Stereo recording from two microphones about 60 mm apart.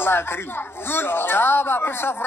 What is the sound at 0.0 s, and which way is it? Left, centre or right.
Speech, left.